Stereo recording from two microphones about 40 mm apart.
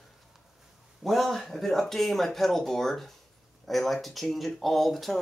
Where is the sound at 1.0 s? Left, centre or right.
Centre.